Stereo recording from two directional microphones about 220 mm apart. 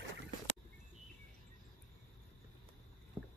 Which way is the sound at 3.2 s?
5° right (ahead or behind).